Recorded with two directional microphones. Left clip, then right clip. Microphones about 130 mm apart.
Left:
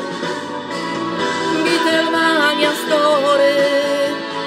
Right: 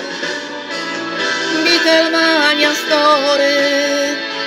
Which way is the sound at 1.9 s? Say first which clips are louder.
Right 3 dB; 20° left (ahead or behind).